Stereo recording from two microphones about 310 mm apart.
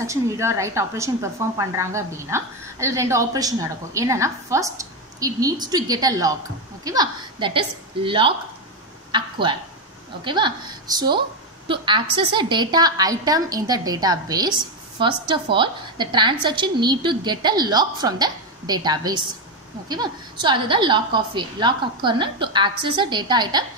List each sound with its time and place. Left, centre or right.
0.0 s a woman's voice: centre